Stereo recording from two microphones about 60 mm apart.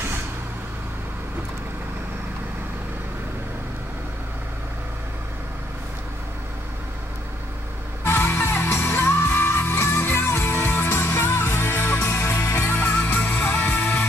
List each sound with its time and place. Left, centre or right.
8.0 s music: left
12.7 s music: left